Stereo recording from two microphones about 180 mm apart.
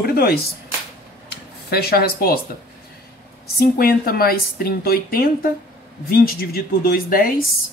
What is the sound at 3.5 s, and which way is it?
Speech, 55° left (ahead or behind).